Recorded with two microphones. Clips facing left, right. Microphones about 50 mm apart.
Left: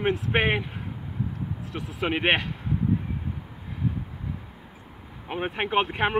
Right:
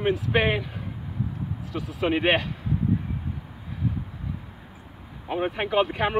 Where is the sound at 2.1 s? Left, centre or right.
Left.